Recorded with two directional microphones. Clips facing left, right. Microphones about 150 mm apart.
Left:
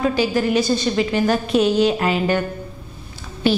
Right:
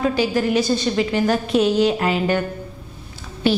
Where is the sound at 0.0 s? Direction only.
5° left (ahead or behind).